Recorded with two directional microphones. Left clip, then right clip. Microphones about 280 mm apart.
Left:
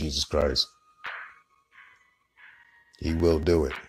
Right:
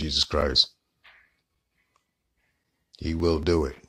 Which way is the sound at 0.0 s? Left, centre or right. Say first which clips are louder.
Right 1 dB; centre.